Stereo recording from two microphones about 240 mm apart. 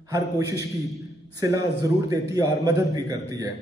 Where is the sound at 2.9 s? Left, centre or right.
Centre.